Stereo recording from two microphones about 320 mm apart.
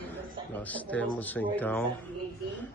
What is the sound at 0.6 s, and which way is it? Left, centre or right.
Speech, centre.